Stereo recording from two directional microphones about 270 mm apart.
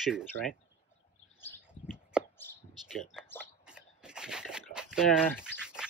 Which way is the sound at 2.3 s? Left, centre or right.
Centre.